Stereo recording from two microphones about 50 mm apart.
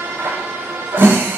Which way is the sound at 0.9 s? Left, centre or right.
Right.